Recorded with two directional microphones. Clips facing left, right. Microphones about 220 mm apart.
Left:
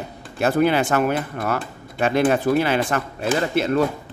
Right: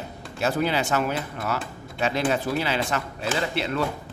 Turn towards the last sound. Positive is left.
turn(degrees=45)  # may be behind; listen again after turning